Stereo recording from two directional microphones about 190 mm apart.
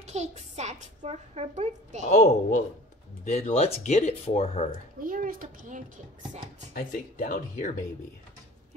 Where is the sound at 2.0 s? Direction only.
40° left (ahead or behind).